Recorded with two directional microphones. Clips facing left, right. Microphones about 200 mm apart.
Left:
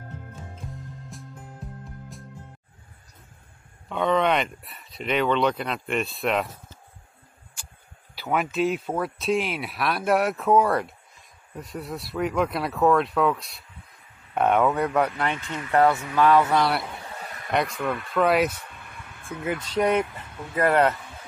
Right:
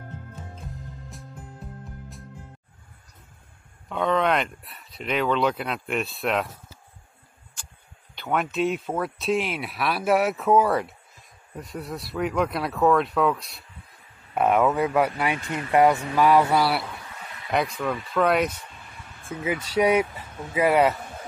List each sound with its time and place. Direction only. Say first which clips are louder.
1.1 s music: left 1 dB; centre (ahead or behind)
3.9 s speech: left 1 dB; centre (ahead or behind)
8.1 s speech: even; 5° left (ahead or behind)
18.7 s a sound: left 1 dB; 55° left (ahead or behind)
19.4 s speech: right 2 dB; 5° right (ahead or behind)